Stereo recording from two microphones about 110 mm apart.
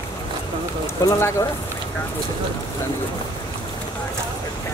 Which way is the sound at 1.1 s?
30° left (ahead or behind).